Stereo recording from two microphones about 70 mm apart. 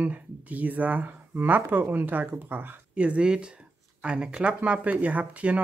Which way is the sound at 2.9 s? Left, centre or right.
Centre.